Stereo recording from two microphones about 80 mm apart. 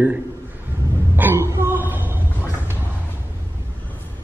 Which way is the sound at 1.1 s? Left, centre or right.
Right.